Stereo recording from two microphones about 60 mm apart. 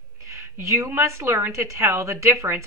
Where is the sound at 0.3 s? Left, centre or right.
Right.